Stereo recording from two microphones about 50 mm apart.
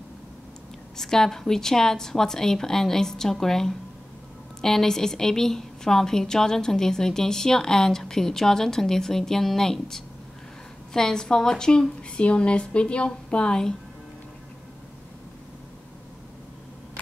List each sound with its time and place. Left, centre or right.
0.9 s a woman's voice: centre